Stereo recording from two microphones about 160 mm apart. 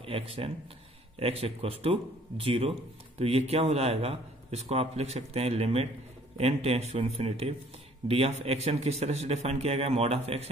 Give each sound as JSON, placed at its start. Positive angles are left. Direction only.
{"t": 0.0, "sound": "a man's voice", "side_deg": -35}